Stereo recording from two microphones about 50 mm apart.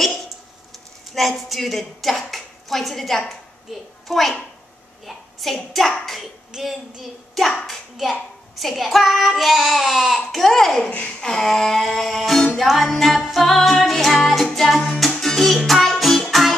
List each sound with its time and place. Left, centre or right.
1.1 s a woman's voice: centre
3.7 s child singing: centre
5.0 s hands: centre
5.7 s child singing: centre
10.9 s a sound: left
11.1 s child singing: centre
12.5 s music: centre